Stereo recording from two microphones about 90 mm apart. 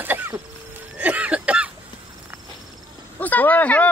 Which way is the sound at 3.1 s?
20° left (ahead or behind).